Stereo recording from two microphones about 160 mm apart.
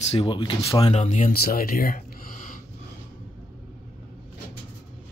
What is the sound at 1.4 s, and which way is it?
Speech, 65° left (ahead or behind).